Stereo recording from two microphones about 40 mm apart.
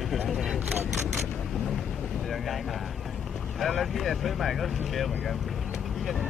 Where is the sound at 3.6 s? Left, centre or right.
Centre.